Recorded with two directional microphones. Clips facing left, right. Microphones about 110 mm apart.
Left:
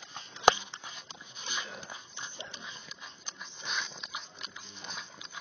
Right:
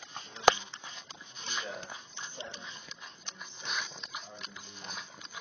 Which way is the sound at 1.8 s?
10° left (ahead or behind).